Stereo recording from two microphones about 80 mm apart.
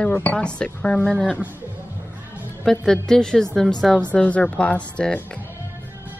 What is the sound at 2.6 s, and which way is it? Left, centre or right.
A woman's voice, centre.